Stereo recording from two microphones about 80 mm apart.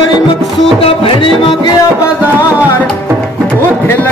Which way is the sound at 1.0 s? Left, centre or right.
Left.